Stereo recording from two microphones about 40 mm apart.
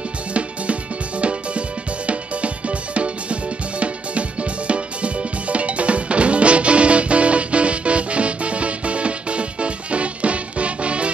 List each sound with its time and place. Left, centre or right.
0.3 s music: right